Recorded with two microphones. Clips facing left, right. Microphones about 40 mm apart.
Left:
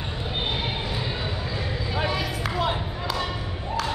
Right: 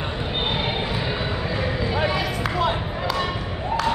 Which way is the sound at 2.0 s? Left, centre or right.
Centre.